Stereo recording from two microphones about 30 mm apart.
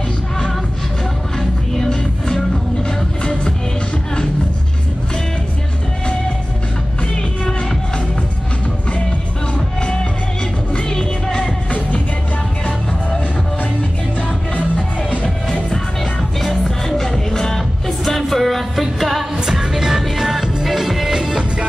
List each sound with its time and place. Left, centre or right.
1.8 s music: centre
10.9 s music: left
15.0 s music: left
16.3 s music: centre
18.0 s music: centre
19.3 s music: centre
21.2 s music: centre